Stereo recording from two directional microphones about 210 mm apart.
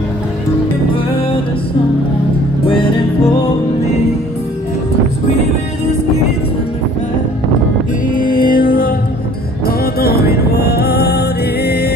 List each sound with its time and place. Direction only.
8.1 s music: 40° left (ahead or behind)